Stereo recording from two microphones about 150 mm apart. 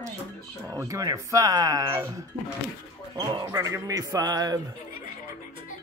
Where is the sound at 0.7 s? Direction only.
20° right (ahead or behind).